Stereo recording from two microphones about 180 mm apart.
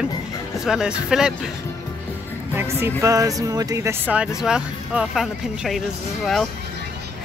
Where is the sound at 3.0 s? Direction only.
20° right (ahead or behind); by 5.8 s centre (ahead or behind).